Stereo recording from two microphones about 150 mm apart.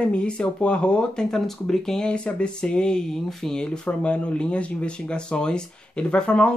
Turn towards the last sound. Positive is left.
turn(degrees=5)  # may be behind; listen again after turning